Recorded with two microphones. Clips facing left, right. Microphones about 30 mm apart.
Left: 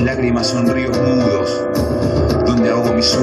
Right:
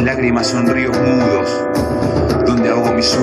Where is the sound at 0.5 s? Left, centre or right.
Centre.